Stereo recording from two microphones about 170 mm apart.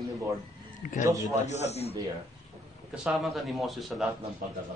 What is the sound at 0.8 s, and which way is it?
A man's voice, 50° left (ahead or behind).